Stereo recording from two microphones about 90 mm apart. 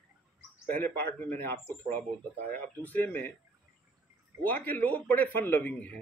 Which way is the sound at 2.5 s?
20° left (ahead or behind).